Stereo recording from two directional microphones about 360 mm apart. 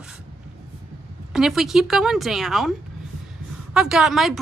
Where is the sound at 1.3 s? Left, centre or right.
Centre.